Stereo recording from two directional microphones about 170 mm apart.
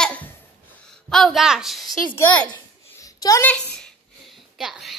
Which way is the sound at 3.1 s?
20° left (ahead or behind).